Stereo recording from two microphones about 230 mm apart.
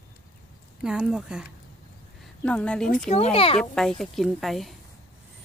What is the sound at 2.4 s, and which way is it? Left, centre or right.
Speech, centre.